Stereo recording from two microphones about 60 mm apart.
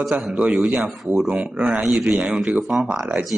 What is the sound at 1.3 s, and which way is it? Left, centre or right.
A man's voice, centre.